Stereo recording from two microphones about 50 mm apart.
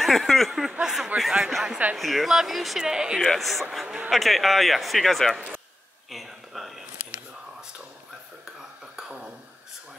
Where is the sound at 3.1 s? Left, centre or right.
Centre.